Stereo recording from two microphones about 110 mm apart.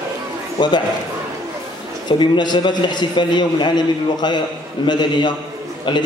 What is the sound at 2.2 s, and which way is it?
A man's voice, 45° left (ahead or behind).